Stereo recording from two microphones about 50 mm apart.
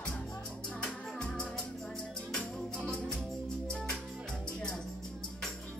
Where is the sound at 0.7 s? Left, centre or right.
Centre.